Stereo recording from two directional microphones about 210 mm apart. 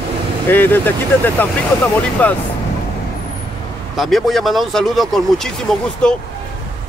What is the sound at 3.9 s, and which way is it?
Speech, centre (ahead or behind).